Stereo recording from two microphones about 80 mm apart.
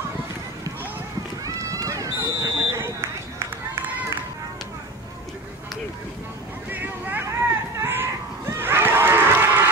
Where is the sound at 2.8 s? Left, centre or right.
Right.